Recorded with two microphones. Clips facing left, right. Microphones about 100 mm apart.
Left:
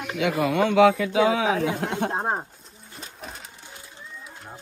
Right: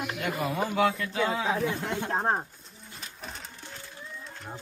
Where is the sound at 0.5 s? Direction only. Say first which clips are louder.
Left 9 dB; 85° left.